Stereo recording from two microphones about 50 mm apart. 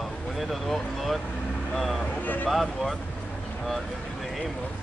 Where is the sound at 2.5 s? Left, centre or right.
Centre.